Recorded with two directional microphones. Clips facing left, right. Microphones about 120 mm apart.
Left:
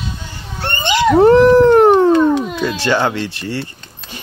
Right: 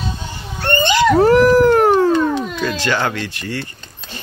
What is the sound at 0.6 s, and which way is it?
Dog, 20° left (ahead or behind).